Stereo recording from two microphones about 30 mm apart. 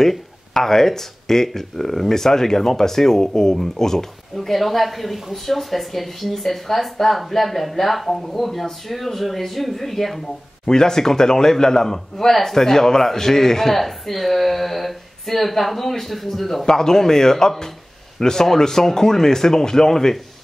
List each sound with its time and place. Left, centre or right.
0.0 s speech: centre
3.5 s speech: centre
10.7 s speech: centre
16.6 s speech: centre